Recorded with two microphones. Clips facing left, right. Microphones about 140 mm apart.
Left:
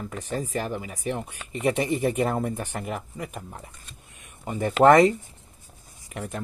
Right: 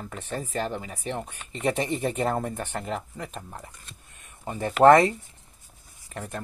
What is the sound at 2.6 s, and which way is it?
Speech, 10° left (ahead or behind).